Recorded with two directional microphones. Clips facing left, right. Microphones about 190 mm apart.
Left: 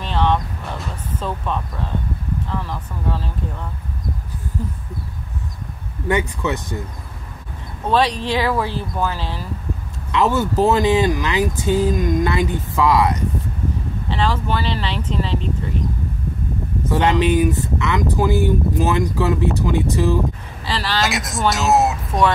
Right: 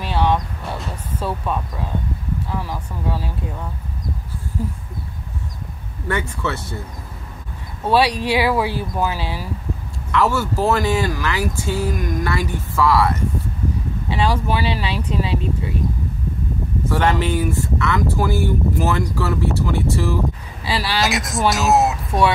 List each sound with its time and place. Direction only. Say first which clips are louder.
0.0 s music: even; 10° right (ahead or behind)
1.2 s speech: right 1 dB; 10° right (ahead or behind)
4.6 s speech: right 3 dB; 10° right (ahead or behind)
6.0 s speech: left 3 dB; 15° left (ahead or behind)
7.9 s speech: right 1 dB; 10° right (ahead or behind)
10.1 s speech: left 2 dB; 20° left (ahead or behind)
14.0 s speech: right 1 dB; 10° right (ahead or behind)
16.9 s speech: left 3 dB; 20° left (ahead or behind)
20.6 s speech: right 1 dB; 10° right (ahead or behind)
21.0 s speech: right 1 dB; centre (ahead or behind)